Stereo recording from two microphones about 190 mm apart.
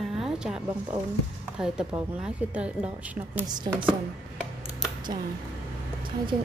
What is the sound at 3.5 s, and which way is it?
Speech, 20° right (ahead or behind).